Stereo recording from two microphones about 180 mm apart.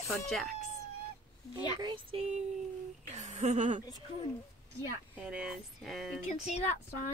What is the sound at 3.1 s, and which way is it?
Speech, 40° right (ahead or behind).